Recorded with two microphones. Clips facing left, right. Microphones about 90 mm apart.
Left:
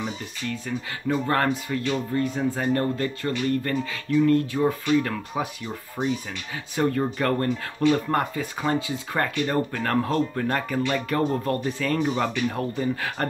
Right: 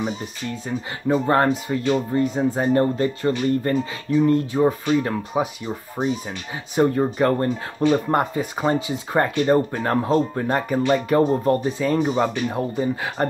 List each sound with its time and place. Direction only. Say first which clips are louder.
0.0 s speech: right 4 dB; 25° right (ahead or behind)